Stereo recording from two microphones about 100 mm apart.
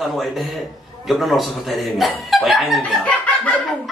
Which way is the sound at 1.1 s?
Centre (ahead or behind).